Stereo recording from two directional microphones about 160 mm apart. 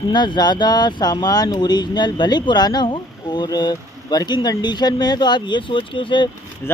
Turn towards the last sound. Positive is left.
turn(degrees=30)  # may be behind; listen again after turning